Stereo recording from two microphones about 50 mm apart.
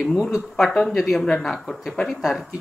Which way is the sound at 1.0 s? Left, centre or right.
Centre.